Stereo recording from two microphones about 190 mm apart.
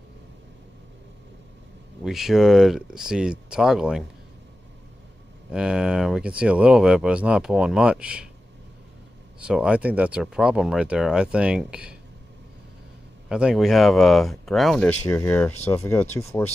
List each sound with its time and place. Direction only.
2.0 s speech: centre (ahead or behind)
5.5 s speech: 5° right (ahead or behind)
9.4 s speech: 5° right (ahead or behind)
13.3 s speech: 5° right (ahead or behind); by 16.4 s 15° left (ahead or behind)